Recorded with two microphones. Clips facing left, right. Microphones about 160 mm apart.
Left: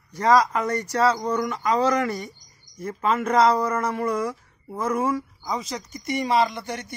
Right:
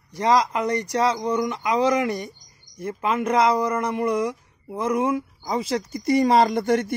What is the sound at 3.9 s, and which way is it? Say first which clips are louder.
Speech: right 2 dB; 15° right (ahead or behind).